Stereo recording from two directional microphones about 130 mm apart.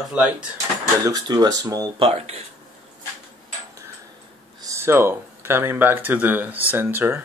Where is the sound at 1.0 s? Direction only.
30° right (ahead or behind).